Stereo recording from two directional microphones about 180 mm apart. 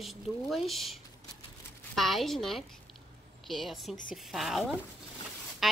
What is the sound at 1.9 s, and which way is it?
Speech, centre (ahead or behind).